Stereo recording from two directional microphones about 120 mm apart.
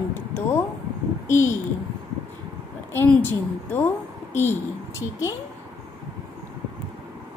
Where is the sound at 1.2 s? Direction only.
20° left (ahead or behind).